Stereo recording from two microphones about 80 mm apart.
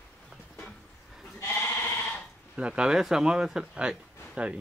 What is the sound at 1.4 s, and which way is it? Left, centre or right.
Sheep, left.